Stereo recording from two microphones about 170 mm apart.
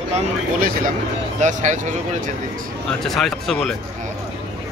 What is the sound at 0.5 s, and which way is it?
Speech, 55° right (ahead or behind).